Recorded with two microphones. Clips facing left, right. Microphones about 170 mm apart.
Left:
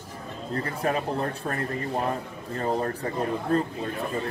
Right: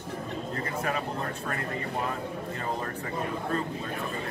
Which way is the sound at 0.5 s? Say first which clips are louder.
Left 6 dB; 35° left (ahead or behind).